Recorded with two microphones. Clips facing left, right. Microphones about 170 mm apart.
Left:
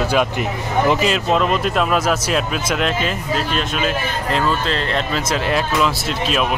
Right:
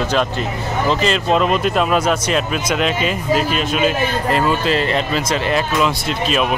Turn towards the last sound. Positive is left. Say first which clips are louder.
# right 1 dB
turn(degrees=0)  # may be behind; listen again after turning